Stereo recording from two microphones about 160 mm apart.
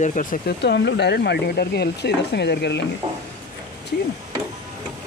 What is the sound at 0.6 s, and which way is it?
Speech, 90° left.